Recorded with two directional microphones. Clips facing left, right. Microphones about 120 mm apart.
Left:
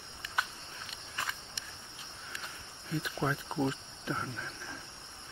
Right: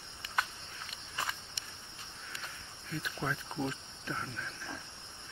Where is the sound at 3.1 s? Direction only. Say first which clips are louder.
Left 4 dB; 25° left (ahead or behind).